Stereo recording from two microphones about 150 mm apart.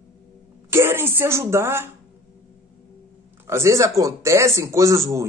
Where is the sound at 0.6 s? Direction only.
15° right (ahead or behind).